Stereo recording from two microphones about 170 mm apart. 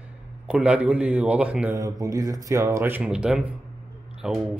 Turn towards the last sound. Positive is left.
turn(degrees=-5)  # may be behind; listen again after turning